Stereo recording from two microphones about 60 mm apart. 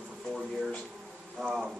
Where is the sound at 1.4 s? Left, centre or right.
Centre.